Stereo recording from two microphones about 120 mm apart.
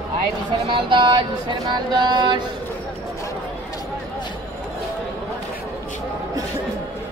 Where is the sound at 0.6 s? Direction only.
45° right (ahead or behind).